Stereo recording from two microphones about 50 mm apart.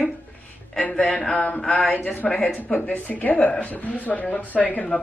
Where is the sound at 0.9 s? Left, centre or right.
Centre.